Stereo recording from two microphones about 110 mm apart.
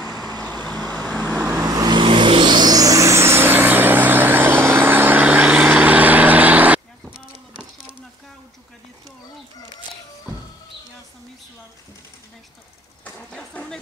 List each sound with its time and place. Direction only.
0.0 s vehicle: centre (ahead or behind)
0.7 s vehicle: 15° left (ahead or behind)
1.5 s vehicle: 35° right (ahead or behind); by 7.6 s 10° right (ahead or behind)
13.0 s vehicle: 10° left (ahead or behind)